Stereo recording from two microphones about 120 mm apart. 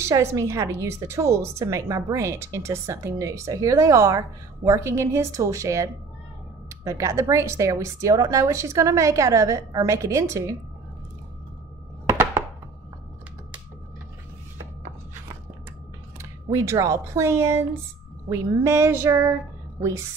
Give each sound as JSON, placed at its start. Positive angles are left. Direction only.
{"t": 0.0, "sound": "a woman's voice", "side_deg": -25}
{"t": 16.2, "sound": "a woman's voice", "side_deg": -25}